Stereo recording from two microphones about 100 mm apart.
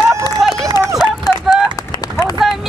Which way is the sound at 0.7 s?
40° left (ahead or behind).